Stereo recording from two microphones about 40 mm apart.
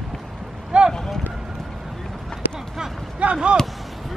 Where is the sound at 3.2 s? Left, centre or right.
Right.